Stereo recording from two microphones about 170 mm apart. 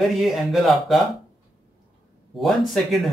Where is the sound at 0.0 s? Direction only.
Centre (ahead or behind).